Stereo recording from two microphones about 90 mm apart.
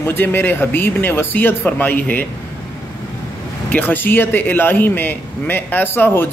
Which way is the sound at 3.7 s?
20° left (ahead or behind).